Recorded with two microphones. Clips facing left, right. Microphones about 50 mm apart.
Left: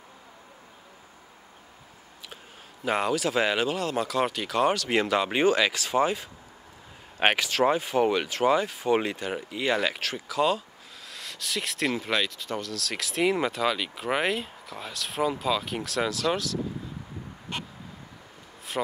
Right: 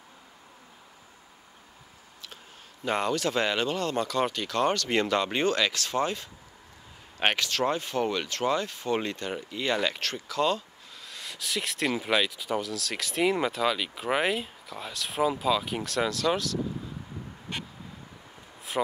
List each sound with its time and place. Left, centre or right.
2.8 s speech: centre